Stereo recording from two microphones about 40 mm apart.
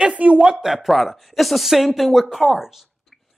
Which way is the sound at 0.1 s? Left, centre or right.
Right.